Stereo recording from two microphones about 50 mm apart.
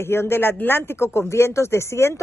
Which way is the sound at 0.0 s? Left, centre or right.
Left.